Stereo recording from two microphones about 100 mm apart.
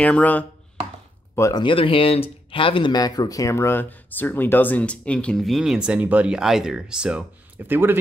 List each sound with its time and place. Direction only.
0.0 s speech: 15° left (ahead or behind)
1.5 s speech: 55° left (ahead or behind); by 8.0 s 20° right (ahead or behind)